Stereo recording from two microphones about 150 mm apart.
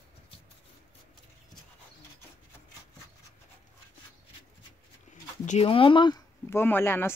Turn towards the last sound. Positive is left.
turn(degrees=15)  # may be behind; listen again after turning